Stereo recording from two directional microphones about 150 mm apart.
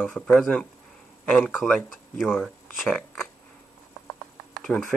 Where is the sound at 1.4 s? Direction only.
Centre (ahead or behind).